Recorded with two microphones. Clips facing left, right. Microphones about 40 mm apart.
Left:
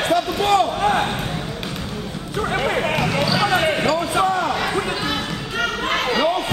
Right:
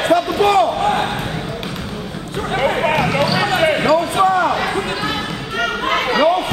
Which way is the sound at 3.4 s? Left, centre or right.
Right.